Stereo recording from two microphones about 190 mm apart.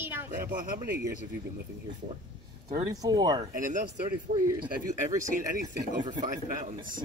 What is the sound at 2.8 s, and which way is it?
Speech, 20° right (ahead or behind).